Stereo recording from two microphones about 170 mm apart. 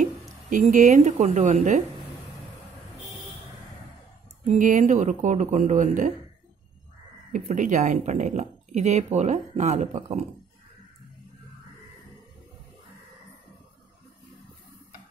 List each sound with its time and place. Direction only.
0.0 s a woman's voice: 50° right (ahead or behind)
4.5 s speech: 50° right (ahead or behind)
7.3 s speech: 45° right (ahead or behind)